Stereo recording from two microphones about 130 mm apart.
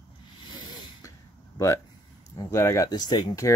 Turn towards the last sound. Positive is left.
turn(degrees=30)  # may be behind; listen again after turning